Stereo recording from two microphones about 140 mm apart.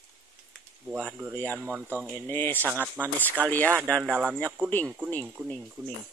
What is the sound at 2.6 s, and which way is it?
Speech, 15° right (ahead or behind).